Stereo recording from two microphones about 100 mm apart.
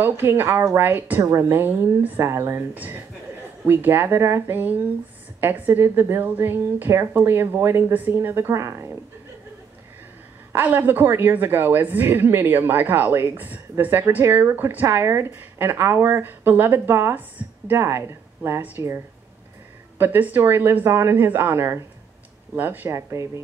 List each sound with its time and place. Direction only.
0.0 s speech: 20° right (ahead or behind)
10.5 s speech: 20° right (ahead or behind)